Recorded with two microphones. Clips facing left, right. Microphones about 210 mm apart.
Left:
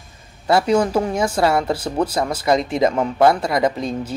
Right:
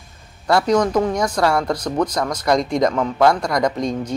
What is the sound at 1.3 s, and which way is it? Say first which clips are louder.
Speech: left 2 dB; 25° left (ahead or behind).